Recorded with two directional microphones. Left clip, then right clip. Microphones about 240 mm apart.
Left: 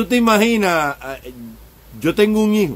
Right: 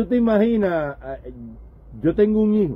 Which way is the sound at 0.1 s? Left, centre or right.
Centre.